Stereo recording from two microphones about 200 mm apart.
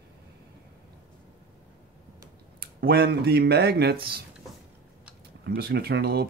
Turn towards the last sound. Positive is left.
turn(degrees=-55)  # may be behind; listen again after turning